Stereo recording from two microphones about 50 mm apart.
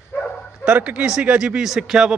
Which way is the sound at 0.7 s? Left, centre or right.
Right.